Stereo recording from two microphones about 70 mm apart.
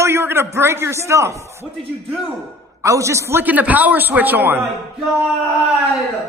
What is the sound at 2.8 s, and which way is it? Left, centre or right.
Speech, right.